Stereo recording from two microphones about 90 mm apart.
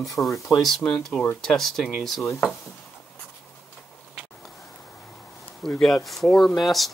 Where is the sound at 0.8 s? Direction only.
5° left (ahead or behind).